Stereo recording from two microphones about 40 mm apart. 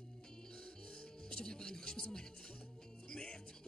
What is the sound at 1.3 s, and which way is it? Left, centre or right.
Music, centre.